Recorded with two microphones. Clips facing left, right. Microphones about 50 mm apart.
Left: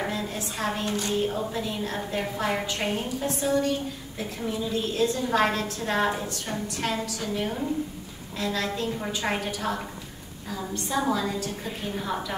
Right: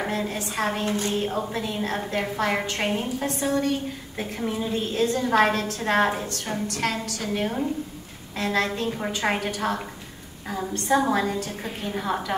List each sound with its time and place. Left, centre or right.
0.0 s a woman's voice: right
8.8 s a woman's voice: right
9.2 s a woman's voice: right
11.0 s a woman's voice: right